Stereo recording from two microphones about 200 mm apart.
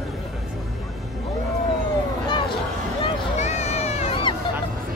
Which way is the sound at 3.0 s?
35° left (ahead or behind).